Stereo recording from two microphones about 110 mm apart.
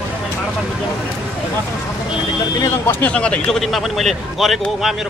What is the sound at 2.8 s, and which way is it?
A man's voice, 10° left (ahead or behind).